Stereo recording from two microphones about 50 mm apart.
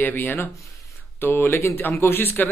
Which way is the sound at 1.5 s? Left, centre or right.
Left.